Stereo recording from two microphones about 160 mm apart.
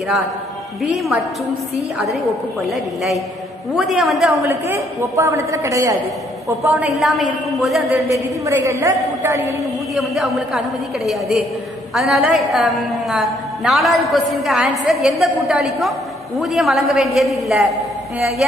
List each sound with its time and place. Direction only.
3.7 s a woman's voice: centre (ahead or behind)
4.4 s a woman's voice: 15° right (ahead or behind)
6.6 s a woman's voice: 10° right (ahead or behind)
7.9 s a woman's voice: 20° right (ahead or behind)
9.9 s a woman's voice: centre (ahead or behind)